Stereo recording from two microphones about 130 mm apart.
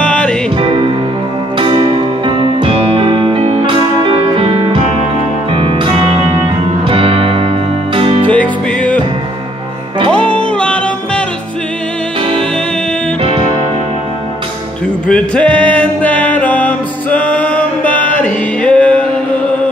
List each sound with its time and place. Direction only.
0.0 s music: 10° left (ahead or behind)
0.6 s music: 40° right (ahead or behind)
8.3 s music: 10° left (ahead or behind)
10.6 s music: 10° left (ahead or behind)
15.0 s music: 10° left (ahead or behind)